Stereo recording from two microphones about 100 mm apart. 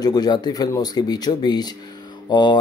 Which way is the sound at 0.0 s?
40° left (ahead or behind).